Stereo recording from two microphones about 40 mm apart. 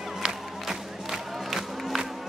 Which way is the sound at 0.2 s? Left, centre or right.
Centre.